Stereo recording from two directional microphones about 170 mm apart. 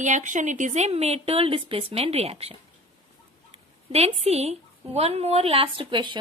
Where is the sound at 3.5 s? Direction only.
35° right (ahead or behind).